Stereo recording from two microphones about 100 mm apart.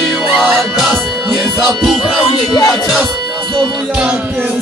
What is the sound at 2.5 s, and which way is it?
Music, 40° left (ahead or behind).